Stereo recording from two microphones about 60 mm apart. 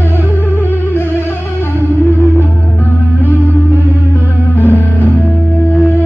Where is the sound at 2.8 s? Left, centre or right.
Left.